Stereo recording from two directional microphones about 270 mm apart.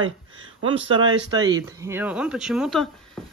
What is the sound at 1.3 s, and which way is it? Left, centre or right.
Speech, centre.